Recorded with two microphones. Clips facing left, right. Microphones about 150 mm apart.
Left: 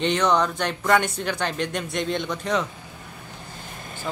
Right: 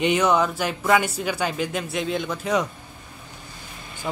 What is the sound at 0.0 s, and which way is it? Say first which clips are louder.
Speech: right 1 dB; 10° right (ahead or behind).